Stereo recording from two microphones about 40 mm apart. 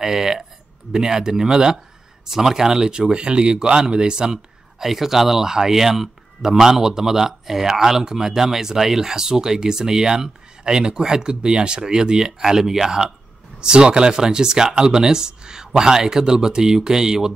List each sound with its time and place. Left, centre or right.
0.0 s speech: centre